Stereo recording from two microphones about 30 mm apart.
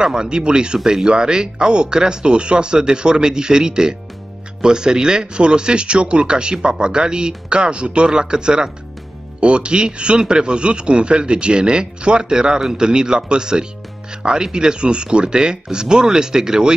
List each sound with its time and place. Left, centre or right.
0.0 s a man's voice: right